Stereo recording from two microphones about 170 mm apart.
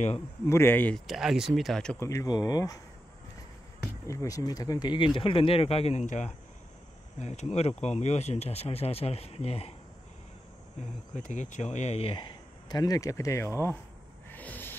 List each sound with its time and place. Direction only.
0.5 s speech: 15° left (ahead or behind)
2.0 s speech: 20° left (ahead or behind)
4.1 s speech: 20° left (ahead or behind); by 9.8 s 35° left (ahead or behind)
10.8 s speech: 45° left (ahead or behind); by 13.7 s 15° left (ahead or behind)
14.3 s a sound: 10° left (ahead or behind)